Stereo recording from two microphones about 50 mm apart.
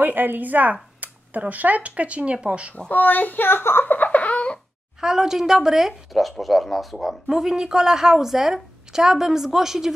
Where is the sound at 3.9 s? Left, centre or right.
Left.